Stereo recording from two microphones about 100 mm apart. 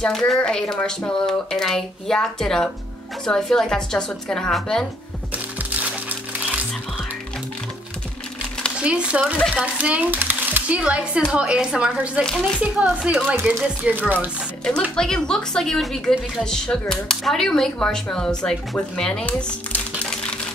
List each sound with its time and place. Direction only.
0.0 s speech: 5° left (ahead or behind)
5.3 s music: 15° right (ahead or behind)
8.7 s speech: 10° right (ahead or behind)
9.4 s speech: 10° left (ahead or behind)
9.8 s speech: 15° right (ahead or behind)
13.4 s speech: 20° right (ahead or behind)
15.0 s speech: 5° left (ahead or behind)